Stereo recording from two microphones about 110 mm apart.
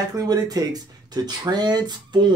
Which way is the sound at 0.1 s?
35° right (ahead or behind).